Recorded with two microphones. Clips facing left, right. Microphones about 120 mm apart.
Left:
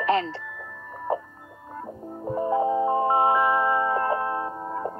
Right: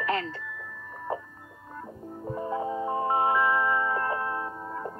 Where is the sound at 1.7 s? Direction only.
35° left (ahead or behind).